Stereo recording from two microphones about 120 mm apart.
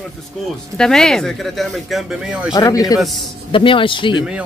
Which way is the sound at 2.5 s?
30° left (ahead or behind).